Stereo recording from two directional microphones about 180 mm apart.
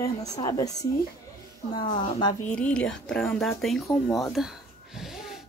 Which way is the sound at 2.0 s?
25° left (ahead or behind).